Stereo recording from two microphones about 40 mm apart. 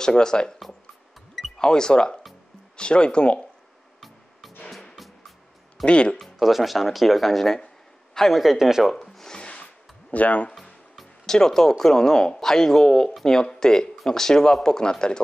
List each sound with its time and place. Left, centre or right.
0.0 s speech: centre
1.6 s speech: centre
5.9 s speech: left
6.4 s speech: centre
8.1 s a sound: centre
8.4 s speech: centre
8.9 s a sound: centre
9.4 s music: left
10.1 s speech: left
10.5 s speech: centre